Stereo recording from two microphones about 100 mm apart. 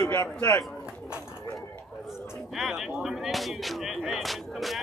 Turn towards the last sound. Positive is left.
turn(degrees=0)  # may be behind; listen again after turning